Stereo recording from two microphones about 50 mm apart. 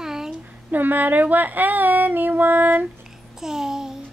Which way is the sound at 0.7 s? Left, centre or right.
Right.